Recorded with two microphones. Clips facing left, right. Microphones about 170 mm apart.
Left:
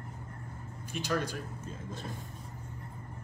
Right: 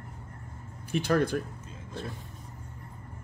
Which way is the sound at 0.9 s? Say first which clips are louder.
Right 7 dB; 60° right (ahead or behind).